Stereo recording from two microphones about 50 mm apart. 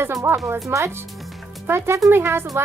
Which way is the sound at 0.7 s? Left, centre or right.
Right.